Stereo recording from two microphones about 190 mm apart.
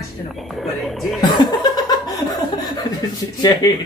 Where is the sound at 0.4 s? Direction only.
Centre (ahead or behind).